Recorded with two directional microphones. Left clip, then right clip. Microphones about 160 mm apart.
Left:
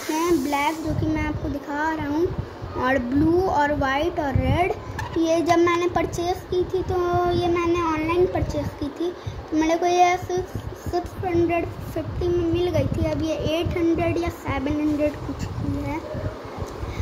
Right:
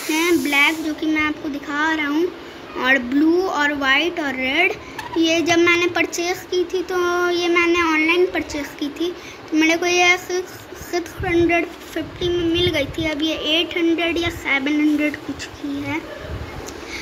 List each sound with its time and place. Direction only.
0.1 s speech: 10° left (ahead or behind)
3.3 s a woman's voice: 15° left (ahead or behind)
12.2 s speech: 15° left (ahead or behind)